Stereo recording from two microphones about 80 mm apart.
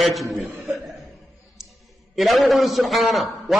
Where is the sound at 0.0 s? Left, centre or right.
Centre.